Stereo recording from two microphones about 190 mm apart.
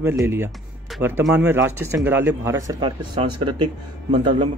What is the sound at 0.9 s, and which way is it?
Music, centre (ahead or behind).